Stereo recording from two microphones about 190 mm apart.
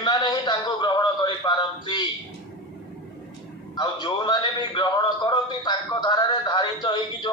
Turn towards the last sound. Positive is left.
turn(degrees=25)  # may be behind; listen again after turning